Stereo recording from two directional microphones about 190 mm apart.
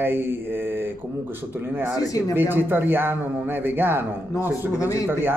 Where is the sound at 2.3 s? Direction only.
10° right (ahead or behind).